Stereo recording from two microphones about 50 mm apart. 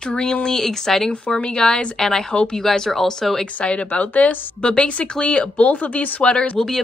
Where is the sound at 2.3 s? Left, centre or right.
Centre.